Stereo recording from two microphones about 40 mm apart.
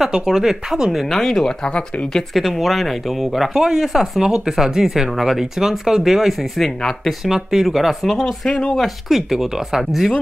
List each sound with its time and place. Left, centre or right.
0.0 s speech: centre
1.1 s speech: centre
2.3 s speech: centre
3.5 s speech: centre
6.6 s speech: centre
7.2 s speech: centre